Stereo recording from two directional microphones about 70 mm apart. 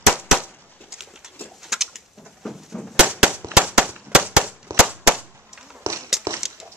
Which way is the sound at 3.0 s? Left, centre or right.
Centre.